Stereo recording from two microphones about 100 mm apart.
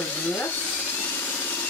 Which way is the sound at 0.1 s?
20° left (ahead or behind).